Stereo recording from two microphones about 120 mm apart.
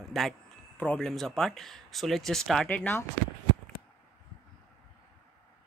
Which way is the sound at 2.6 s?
15° left (ahead or behind).